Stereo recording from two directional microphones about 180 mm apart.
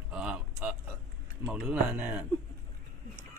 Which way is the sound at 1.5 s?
5° right (ahead or behind).